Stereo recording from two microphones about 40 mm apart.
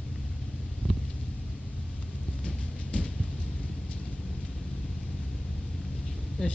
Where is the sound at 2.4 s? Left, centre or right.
Left.